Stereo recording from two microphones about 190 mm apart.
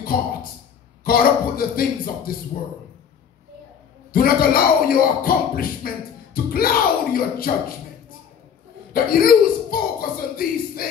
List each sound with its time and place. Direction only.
1.0 s speech: 50° left (ahead or behind)
4.1 s speech: 50° left (ahead or behind)
8.9 s a sound: 50° left (ahead or behind)